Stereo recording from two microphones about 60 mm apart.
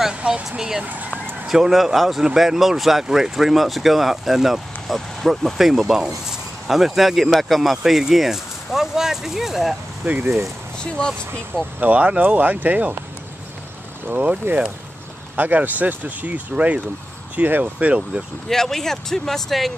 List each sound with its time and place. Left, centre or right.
0.2 s speech: centre
1.5 s speech: centre
10.0 s speech: right
10.8 s speech: centre
11.8 s speech: right
14.0 s speech: right
15.3 s speech: right
18.5 s speech: centre